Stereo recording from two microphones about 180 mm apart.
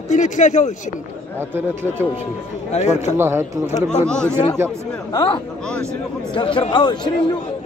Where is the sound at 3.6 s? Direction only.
35° left (ahead or behind).